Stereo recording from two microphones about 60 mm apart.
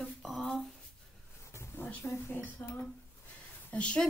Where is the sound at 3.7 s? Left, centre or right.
Centre.